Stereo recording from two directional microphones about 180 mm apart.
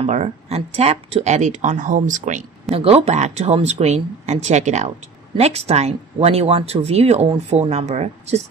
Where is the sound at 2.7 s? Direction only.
35° right (ahead or behind).